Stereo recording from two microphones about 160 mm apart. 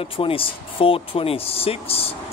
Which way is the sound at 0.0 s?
35° left (ahead or behind).